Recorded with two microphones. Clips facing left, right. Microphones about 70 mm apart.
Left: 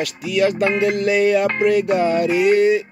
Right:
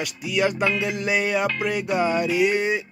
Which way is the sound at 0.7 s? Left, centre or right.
Left.